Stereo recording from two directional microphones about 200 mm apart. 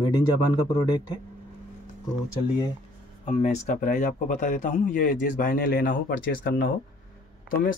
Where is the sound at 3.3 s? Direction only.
35° left (ahead or behind).